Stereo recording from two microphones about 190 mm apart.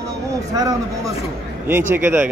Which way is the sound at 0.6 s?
20° right (ahead or behind).